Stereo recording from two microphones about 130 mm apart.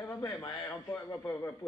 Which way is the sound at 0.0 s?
15° left (ahead or behind).